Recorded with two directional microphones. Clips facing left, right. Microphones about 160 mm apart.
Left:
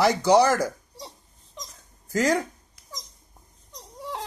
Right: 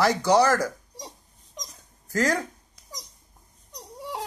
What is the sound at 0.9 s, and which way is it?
Dog, 15° right (ahead or behind).